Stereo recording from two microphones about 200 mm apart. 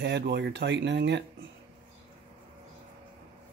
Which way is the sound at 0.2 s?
60° right (ahead or behind).